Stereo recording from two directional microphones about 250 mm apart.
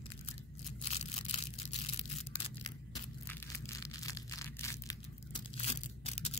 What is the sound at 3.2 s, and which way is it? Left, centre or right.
Crushing, centre.